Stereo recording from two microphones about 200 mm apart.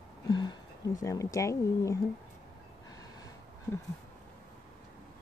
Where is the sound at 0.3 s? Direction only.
20° left (ahead or behind).